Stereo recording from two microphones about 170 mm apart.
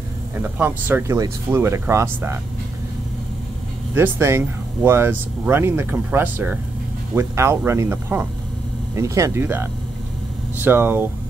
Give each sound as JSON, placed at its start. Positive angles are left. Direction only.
{"t": 0.4, "sound": "speech", "side_deg": -10}
{"t": 3.9, "sound": "speech", "side_deg": -15}